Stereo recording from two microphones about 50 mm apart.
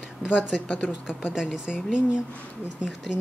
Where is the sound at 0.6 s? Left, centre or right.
Left.